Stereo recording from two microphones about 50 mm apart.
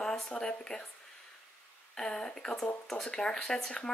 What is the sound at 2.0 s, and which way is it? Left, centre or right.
Speech, centre.